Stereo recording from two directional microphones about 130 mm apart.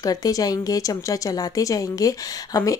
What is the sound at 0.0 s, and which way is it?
Speech, 30° left (ahead or behind).